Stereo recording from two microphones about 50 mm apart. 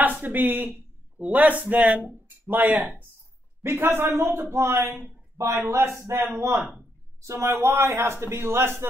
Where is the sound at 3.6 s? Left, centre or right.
Right.